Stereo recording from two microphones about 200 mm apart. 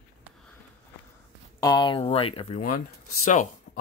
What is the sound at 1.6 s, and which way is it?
Speech, 20° left (ahead or behind).